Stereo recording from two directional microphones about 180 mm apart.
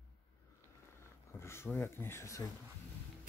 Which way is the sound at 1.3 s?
15° left (ahead or behind).